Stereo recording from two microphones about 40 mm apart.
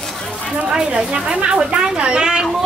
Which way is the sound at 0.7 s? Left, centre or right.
Centre.